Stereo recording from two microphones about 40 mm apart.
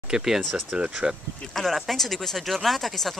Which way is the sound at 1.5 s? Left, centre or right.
Centre.